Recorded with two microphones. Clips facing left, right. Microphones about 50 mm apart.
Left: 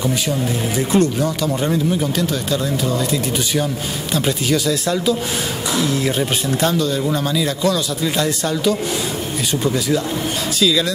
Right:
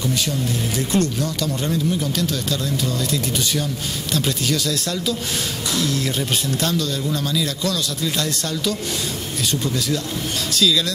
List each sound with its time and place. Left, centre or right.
0.0 s speech: centre